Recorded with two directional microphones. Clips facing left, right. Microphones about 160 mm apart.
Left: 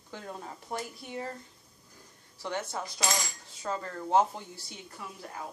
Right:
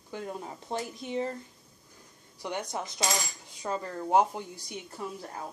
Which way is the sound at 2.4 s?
15° right (ahead or behind).